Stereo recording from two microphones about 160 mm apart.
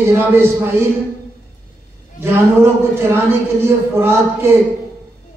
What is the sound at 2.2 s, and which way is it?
A man's voice, 15° right (ahead or behind).